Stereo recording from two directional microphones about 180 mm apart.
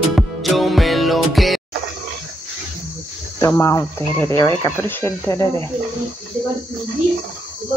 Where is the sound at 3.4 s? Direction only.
15° left (ahead or behind).